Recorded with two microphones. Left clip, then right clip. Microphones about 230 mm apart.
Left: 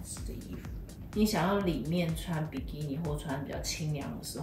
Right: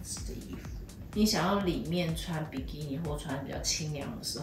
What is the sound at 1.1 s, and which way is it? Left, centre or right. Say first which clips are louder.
Speech: right 1 dB; centre.